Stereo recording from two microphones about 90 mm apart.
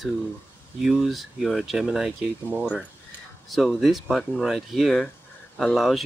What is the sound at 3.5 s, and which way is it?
Speech, centre (ahead or behind).